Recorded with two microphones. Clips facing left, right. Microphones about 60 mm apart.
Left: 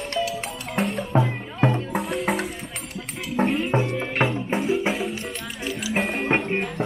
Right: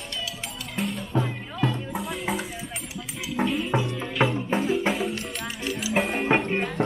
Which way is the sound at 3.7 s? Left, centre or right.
Left.